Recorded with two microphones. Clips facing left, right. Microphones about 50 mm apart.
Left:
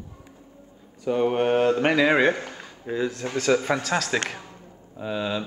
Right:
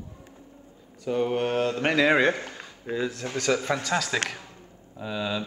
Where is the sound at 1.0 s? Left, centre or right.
Centre.